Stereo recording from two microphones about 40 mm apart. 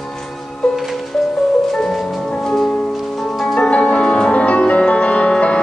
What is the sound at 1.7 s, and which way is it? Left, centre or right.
Music, centre.